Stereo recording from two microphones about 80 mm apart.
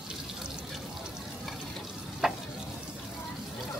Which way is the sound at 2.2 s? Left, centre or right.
Centre.